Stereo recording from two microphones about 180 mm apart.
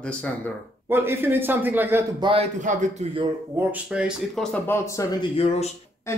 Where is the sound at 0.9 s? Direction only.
10° right (ahead or behind).